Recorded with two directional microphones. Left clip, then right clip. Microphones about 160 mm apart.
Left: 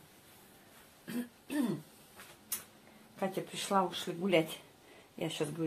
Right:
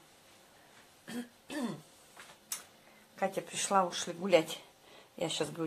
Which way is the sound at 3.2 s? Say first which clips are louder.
Right 3 dB; 50° right (ahead or behind).